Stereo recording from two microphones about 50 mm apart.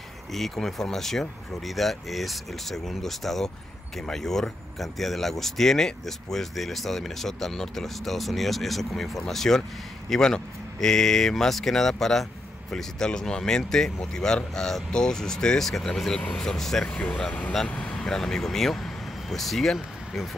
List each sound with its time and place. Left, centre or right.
0.3 s speech: centre
17.6 s vehicle: left
18.0 s speech: centre